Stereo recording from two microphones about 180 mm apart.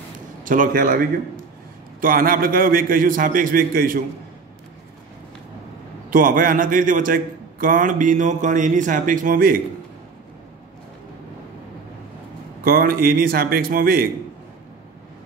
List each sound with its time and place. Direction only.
0.4 s a man's voice: 50° right (ahead or behind)
6.0 s a man's voice: 50° right (ahead or behind)
12.6 s a man's voice: 55° right (ahead or behind)